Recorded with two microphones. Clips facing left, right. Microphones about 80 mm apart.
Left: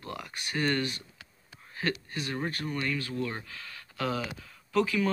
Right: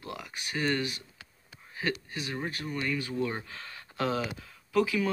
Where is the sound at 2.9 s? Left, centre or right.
Centre.